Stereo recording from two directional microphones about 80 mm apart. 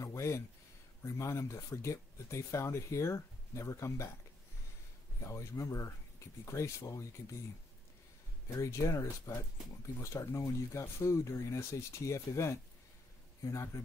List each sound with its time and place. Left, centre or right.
0.0 s a sound: left
1.0 s speech: left
5.2 s speech: left
8.5 s speech: left